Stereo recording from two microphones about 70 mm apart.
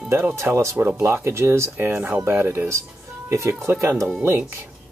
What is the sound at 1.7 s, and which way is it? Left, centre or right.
Speech, right.